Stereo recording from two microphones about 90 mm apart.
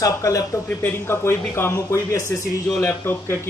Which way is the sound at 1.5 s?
30° left (ahead or behind).